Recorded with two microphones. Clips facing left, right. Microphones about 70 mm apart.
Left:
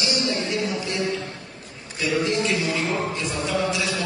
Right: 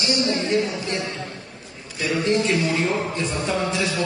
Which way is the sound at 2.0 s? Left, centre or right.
Right.